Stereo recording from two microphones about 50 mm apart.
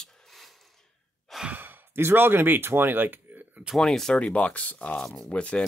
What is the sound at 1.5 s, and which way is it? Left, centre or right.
Speech, right.